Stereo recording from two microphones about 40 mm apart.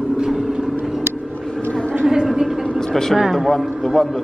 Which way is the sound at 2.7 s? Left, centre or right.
Centre.